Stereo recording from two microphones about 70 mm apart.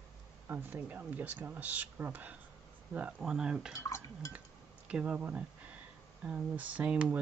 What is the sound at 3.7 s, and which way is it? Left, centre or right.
Dishes, left.